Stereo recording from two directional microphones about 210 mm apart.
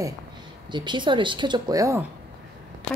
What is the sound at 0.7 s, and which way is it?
Speech, 20° right (ahead or behind).